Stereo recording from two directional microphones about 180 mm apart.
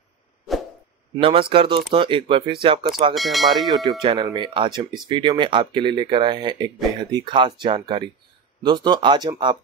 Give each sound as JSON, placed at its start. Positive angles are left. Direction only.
{"t": 1.2, "sound": "speech", "side_deg": -30}
{"t": 3.2, "sound": "speech", "side_deg": 0}
{"t": 3.6, "sound": "speech", "side_deg": -20}